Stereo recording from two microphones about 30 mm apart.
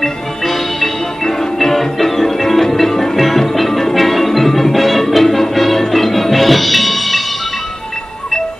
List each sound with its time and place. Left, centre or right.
0.0 s music: centre